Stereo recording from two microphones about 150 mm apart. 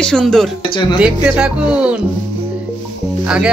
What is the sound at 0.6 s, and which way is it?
Speech, 30° left (ahead or behind).